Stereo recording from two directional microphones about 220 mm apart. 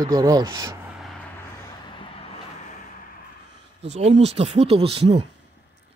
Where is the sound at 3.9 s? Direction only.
30° right (ahead or behind).